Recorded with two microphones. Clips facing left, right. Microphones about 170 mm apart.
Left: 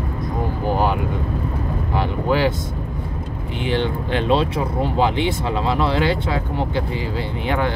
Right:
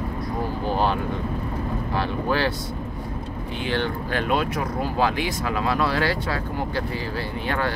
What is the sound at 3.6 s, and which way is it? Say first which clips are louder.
Speech: left 4 dB; 20° left (ahead or behind).